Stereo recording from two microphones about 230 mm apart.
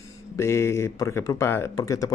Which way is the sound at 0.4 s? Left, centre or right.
Centre.